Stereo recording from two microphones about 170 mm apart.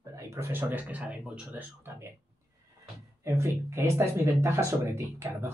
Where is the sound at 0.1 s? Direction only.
15° right (ahead or behind).